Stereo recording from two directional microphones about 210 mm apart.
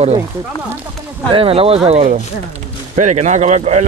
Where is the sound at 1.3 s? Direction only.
25° right (ahead or behind).